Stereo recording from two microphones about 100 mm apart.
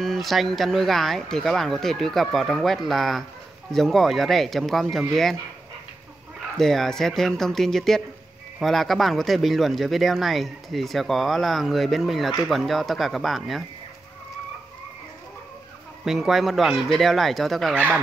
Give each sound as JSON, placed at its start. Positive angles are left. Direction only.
{"t": 0.0, "sound": "speech", "side_deg": 0}
{"t": 6.5, "sound": "speech", "side_deg": 5}
{"t": 16.1, "sound": "speech", "side_deg": -5}
{"t": 17.7, "sound": "speech", "side_deg": -15}